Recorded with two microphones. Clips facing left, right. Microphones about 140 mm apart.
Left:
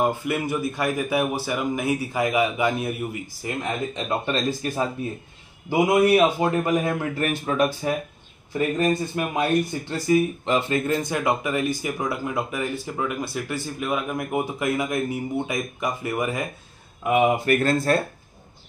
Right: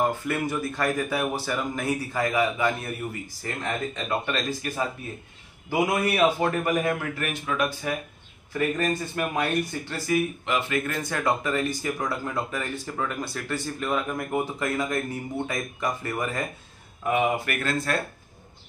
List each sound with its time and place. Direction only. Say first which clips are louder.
0.0 s speech: left 2 dB; 10° left (ahead or behind)
4.3 s speech: left 4 dB; 30° left (ahead or behind)
7.2 s speech: left 5 dB; 35° left (ahead or behind)
8.5 s speech: left 4 dB; 20° left (ahead or behind)
11.0 s speech: left 2 dB; 15° left (ahead or behind)
17.5 s speech: left 8 dB; 35° left (ahead or behind)